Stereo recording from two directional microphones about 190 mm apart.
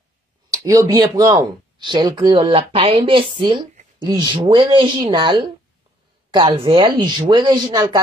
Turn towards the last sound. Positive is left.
turn(degrees=-20)  # may be behind; listen again after turning